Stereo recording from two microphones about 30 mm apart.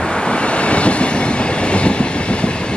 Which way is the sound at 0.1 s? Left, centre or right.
Left.